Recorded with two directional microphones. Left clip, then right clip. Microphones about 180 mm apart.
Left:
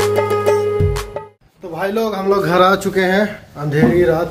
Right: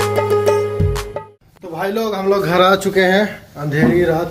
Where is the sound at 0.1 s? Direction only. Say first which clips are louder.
Even; centre (ahead or behind).